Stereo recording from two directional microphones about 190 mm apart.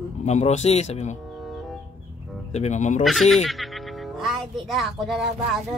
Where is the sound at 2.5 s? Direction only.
35° left (ahead or behind).